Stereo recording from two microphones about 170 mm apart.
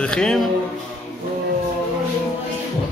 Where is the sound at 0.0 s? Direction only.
5° left (ahead or behind).